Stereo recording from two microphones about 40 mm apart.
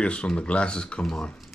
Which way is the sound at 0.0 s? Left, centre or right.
Left.